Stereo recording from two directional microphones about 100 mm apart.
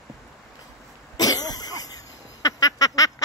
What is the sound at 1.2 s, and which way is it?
Cough, 40° left (ahead or behind).